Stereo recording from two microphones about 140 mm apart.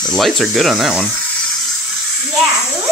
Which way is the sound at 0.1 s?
Centre (ahead or behind).